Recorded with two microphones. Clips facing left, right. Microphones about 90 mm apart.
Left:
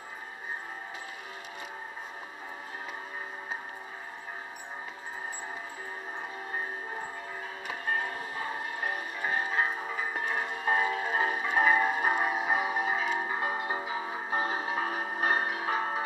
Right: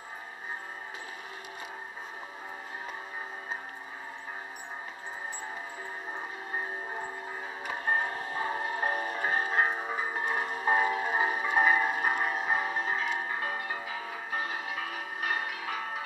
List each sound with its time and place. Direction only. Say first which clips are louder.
7.6 s music: right 2 dB; 30° right (ahead or behind); by 16.0 s 35° left (ahead or behind)